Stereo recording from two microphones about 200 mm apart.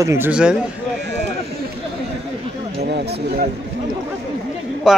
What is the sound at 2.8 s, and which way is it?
Speech, 55° right (ahead or behind).